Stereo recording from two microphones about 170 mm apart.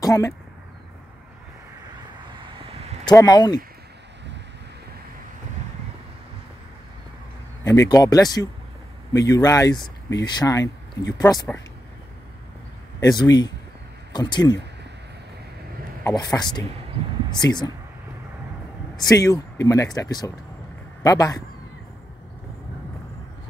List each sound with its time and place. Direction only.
0.0 s speech: 20° left (ahead or behind)
3.2 s speech: 25° left (ahead or behind)
7.6 s speech: 20° left (ahead or behind)
13.0 s speech: 25° left (ahead or behind)
16.0 s speech: 20° left (ahead or behind)
18.9 s a man's voice: 20° left (ahead or behind)